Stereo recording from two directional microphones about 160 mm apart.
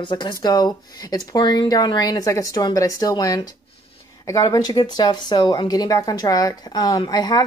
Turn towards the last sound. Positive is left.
turn(degrees=25)  # may be behind; listen again after turning